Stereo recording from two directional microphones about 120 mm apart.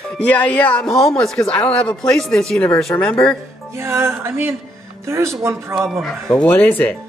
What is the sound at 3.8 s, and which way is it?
A woman's voice, 20° right (ahead or behind).